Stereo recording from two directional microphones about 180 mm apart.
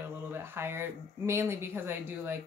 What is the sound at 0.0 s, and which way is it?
Speech, 15° right (ahead or behind).